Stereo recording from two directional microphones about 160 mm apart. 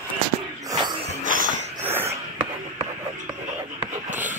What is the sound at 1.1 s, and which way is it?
Music, 55° right (ahead or behind).